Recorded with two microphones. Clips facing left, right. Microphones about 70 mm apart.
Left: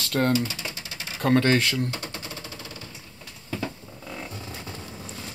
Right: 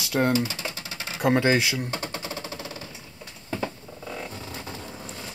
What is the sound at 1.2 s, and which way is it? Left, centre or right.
Speech, centre.